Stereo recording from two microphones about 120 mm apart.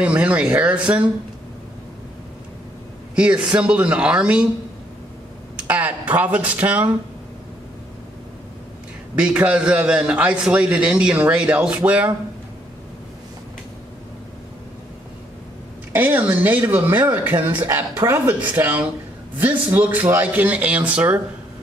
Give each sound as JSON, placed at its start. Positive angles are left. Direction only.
{"t": 0.0, "sound": "a man's voice", "side_deg": -10}
{"t": 3.2, "sound": "a man's voice", "side_deg": -10}
{"t": 5.6, "sound": "a man's voice", "side_deg": -15}
{"t": 9.2, "sound": "a man's voice", "side_deg": -10}
{"t": 15.9, "sound": "a man's voice", "side_deg": -15}